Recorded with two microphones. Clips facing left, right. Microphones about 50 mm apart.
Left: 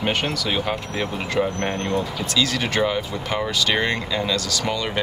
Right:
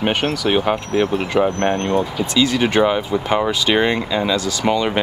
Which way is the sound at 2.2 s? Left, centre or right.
Right.